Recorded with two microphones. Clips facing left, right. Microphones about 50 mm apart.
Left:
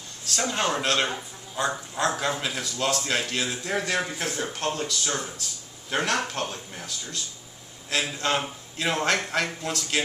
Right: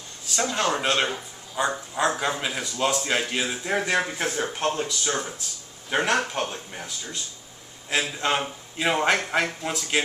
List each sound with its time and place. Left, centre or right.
0.3 s a man's voice: centre
1.1 s a sound: centre
1.7 s a man's voice: centre